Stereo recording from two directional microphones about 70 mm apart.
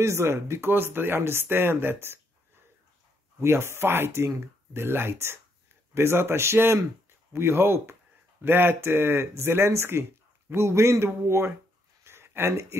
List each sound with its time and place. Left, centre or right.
0.0 s speech: right
3.3 s speech: right
12.0 s a sound: right